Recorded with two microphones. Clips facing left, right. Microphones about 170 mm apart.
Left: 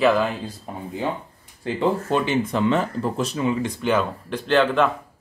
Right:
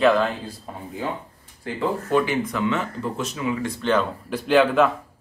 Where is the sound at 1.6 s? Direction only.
25° left (ahead or behind).